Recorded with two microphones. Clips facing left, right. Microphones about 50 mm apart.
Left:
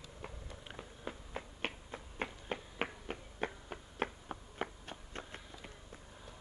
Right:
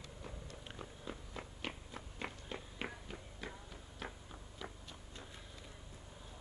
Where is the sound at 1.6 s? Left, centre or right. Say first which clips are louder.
Left 4 dB; left.